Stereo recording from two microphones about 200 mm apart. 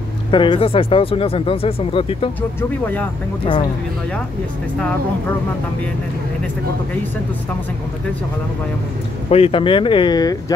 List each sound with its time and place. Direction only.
0.3 s speech: 25° left (ahead or behind)
9.3 s speech: 30° left (ahead or behind)